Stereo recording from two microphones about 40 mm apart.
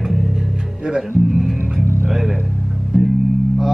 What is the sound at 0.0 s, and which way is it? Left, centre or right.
Music, centre.